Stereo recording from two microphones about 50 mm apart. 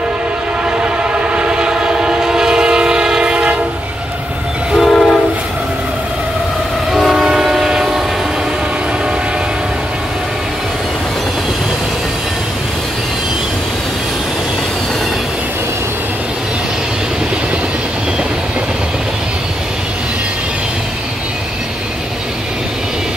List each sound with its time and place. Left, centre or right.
0.7 s train: right
4.7 s train: centre
6.9 s train: centre